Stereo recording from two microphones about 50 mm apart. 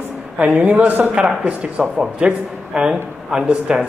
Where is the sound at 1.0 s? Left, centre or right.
Right.